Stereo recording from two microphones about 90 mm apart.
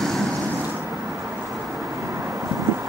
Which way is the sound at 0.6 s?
25° right (ahead or behind).